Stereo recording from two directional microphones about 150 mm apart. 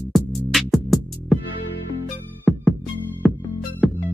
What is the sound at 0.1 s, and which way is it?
Music, centre (ahead or behind).